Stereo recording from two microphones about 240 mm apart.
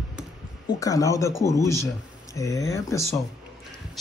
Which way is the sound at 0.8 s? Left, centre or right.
Centre.